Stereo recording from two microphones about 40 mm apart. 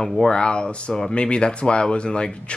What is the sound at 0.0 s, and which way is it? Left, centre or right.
Speech, centre.